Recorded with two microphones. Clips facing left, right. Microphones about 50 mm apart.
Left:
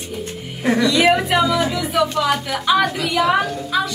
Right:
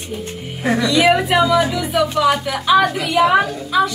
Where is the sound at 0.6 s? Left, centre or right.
Centre.